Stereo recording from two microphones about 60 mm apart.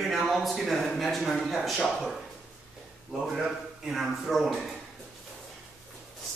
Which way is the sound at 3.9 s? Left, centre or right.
Centre.